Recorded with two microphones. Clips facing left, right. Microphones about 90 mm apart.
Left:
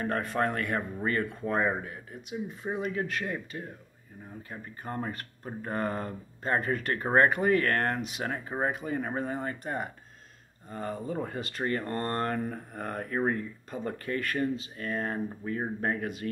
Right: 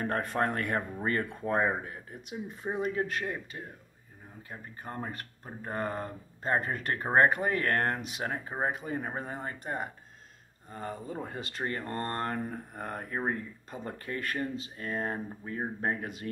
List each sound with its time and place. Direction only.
0.2 s speech: 40° right (ahead or behind)
3.5 s speech: 15° right (ahead or behind)